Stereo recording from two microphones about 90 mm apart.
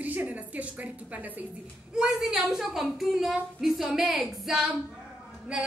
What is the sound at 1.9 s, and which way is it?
A woman's voice, 5° right (ahead or behind).